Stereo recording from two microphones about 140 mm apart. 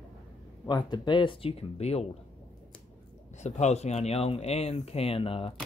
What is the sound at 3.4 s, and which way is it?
Speech, 55° left (ahead or behind).